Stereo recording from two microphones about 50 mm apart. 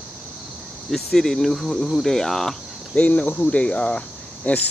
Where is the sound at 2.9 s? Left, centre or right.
Left.